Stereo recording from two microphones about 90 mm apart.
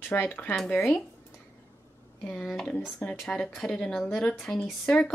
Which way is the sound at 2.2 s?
10° left (ahead or behind).